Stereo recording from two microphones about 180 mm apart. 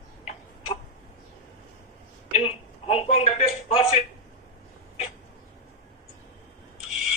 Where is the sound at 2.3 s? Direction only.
35° left (ahead or behind).